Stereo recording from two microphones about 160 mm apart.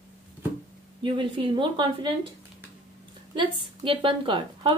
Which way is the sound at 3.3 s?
30° right (ahead or behind).